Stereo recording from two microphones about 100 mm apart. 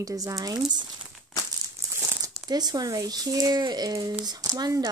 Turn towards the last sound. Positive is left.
turn(degrees=-35)  # may be behind; listen again after turning